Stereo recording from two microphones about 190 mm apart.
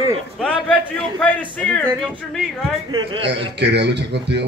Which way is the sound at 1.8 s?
Centre (ahead or behind).